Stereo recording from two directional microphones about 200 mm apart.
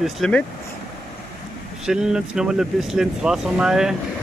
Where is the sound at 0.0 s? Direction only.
Centre (ahead or behind).